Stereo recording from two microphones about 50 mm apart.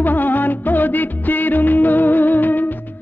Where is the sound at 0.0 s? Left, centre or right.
Left.